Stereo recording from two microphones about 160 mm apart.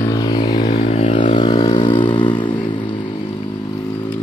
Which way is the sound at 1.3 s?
30° left (ahead or behind).